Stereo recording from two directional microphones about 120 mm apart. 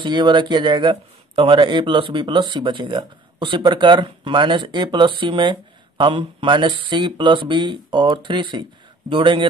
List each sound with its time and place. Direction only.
0.0 s a man's voice: 40° right (ahead or behind)